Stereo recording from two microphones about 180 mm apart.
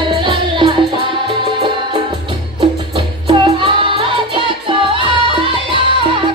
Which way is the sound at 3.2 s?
30° right (ahead or behind).